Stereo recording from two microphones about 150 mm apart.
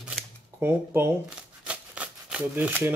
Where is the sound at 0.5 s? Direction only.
15° right (ahead or behind).